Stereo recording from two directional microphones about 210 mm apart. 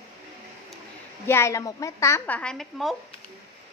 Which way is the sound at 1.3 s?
10° left (ahead or behind).